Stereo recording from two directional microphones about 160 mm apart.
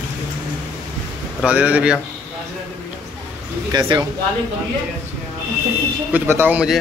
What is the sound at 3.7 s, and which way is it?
Speech, 25° right (ahead or behind).